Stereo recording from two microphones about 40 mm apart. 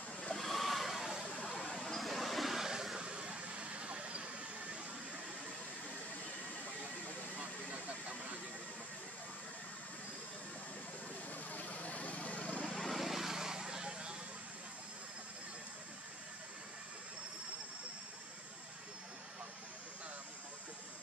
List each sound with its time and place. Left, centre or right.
0.4 s vehicle: centre
1.9 s a sound: centre
3.0 s vehicle: right
11.3 s vehicle: left
12.7 s vehicle: centre
13.0 s vehicle: centre